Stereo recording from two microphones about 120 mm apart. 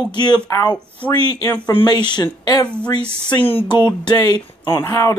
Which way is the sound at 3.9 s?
35° left (ahead or behind).